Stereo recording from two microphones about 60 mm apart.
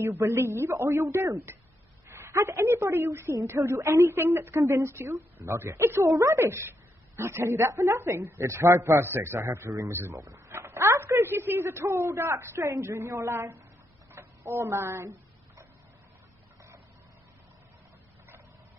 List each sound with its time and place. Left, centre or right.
0.1 s a man's voice: right
2.0 s a woman's voice: right
4.1 s a man's voice: right
6.0 s a man's voice: right
6.3 s a man's voice: right
9.1 s a man's voice: right
9.4 s a man's voice: right
9.8 s a man's voice: right
14.2 s a sound: right
14.5 s a man's voice: right